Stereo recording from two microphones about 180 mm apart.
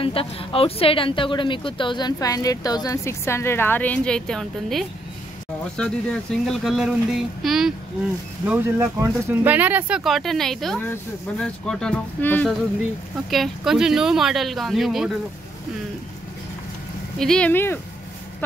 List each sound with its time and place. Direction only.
0.0 s a woman's voice: 30° left (ahead or behind); by 7.7 s centre (ahead or behind)
8.5 s speech: 15° right (ahead or behind)
17.2 s speech: 5° left (ahead or behind)